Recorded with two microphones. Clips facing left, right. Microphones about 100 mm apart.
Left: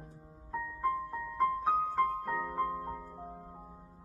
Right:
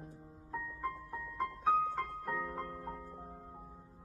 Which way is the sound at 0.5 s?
Centre (ahead or behind).